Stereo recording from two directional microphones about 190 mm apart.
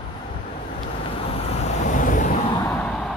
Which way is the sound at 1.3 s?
30° left (ahead or behind).